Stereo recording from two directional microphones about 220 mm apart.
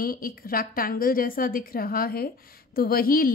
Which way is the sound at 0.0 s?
40° left (ahead or behind).